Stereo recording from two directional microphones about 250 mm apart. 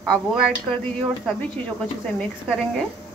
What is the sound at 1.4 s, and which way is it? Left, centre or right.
Speech, centre.